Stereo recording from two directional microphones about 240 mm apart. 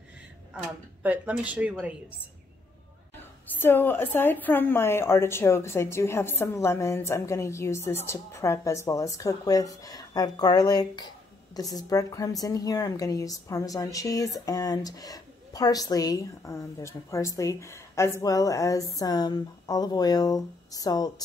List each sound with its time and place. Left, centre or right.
1.0 s a woman's voice: centre
3.4 s a woman's voice: centre